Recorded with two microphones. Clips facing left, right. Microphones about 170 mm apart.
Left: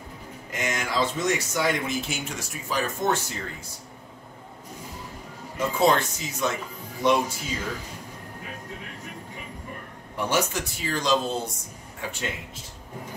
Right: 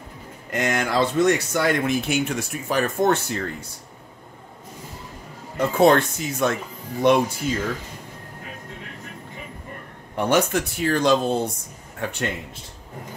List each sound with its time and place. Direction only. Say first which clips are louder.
0.5 s speech: right 6 dB; 60° right (ahead or behind)
5.6 s speech: right 5 dB; 60° right (ahead or behind)
10.1 s speech: right 6 dB; 60° right (ahead or behind)